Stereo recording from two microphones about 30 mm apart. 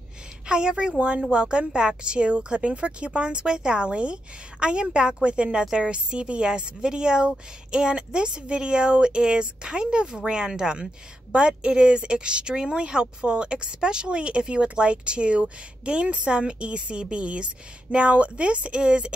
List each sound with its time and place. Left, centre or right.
0.5 s speech: right
0.9 s a woman's voice: right
11.3 s a woman's voice: right